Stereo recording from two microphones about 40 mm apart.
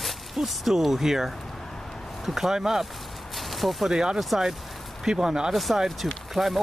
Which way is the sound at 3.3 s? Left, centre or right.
Centre.